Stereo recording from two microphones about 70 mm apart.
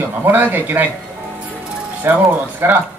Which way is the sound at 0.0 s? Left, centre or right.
Right.